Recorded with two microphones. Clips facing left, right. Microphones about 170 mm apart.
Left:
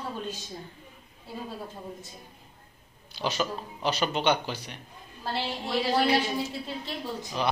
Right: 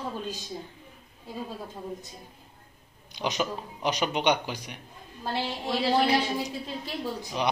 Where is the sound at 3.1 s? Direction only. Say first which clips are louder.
Even; 15° right (ahead or behind).